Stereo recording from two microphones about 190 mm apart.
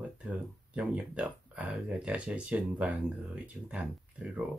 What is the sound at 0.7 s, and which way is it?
Speech, 5° right (ahead or behind).